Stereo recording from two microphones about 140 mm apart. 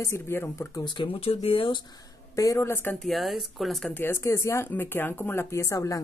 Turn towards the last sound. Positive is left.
turn(degrees=25)  # may be behind; listen again after turning